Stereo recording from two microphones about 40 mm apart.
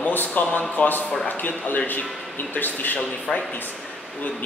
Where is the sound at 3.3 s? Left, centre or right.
Centre.